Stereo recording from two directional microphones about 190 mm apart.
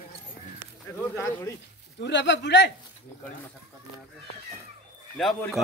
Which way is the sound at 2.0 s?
65° left (ahead or behind).